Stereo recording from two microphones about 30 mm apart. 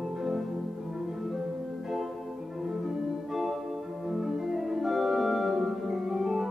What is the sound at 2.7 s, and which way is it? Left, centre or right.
Organ, centre.